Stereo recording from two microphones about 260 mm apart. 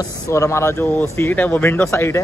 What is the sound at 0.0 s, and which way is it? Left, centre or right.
A man's voice, centre.